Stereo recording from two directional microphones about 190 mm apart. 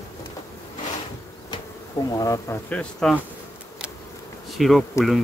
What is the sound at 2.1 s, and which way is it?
Speech, 20° left (ahead or behind).